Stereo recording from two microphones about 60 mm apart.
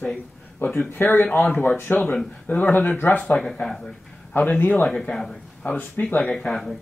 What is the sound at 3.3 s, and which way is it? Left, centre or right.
Speech, centre.